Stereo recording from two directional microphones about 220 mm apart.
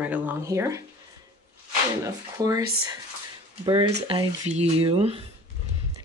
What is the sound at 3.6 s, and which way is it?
A woman's voice, 20° right (ahead or behind).